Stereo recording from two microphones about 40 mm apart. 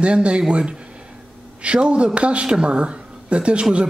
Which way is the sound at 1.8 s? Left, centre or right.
Right.